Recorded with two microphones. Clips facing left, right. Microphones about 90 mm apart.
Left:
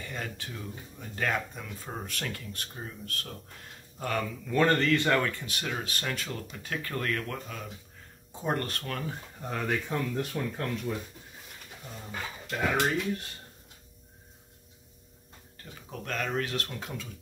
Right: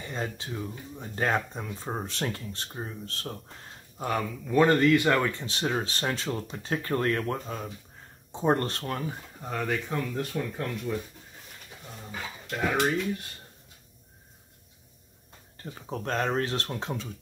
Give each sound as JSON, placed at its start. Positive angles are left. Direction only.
{"t": 0.0, "sound": "speech", "side_deg": -25}
{"t": 4.0, "sound": "speech", "side_deg": -15}
{"t": 9.4, "sound": "speech", "side_deg": 0}
{"t": 12.1, "sound": "speech", "side_deg": -5}
{"t": 15.6, "sound": "speech", "side_deg": -35}